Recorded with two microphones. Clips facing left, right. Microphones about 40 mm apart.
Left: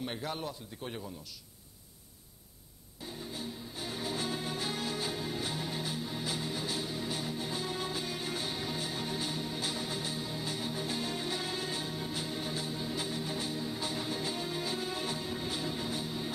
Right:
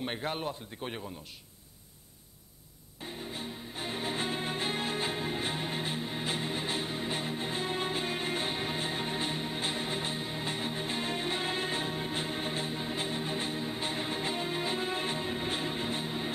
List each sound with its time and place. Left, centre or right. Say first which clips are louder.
0.0 s a man's voice: right 3 dB; right
3.3 s music: right 2 dB; right